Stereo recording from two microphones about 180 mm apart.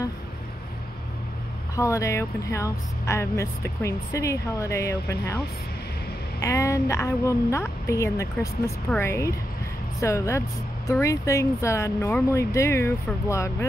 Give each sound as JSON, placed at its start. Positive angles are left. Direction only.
{"t": 1.8, "sound": "speech", "side_deg": 15}
{"t": 6.4, "sound": "speech", "side_deg": 15}